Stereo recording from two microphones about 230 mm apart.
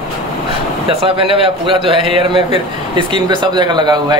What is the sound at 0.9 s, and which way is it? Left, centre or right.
A man's voice, right.